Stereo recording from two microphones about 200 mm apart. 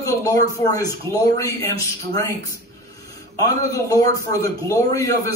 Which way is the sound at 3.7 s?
15° left (ahead or behind).